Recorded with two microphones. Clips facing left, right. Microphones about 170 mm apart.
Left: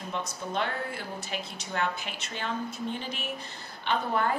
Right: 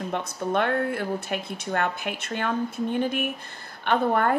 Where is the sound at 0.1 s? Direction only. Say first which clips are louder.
Right 6 dB; 55° right (ahead or behind).